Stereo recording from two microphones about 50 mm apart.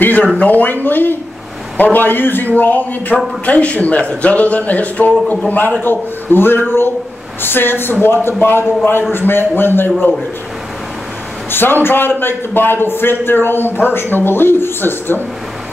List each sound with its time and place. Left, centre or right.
0.4 s a man's voice: left
5.8 s a man's voice: left
11.5 s a man's voice: left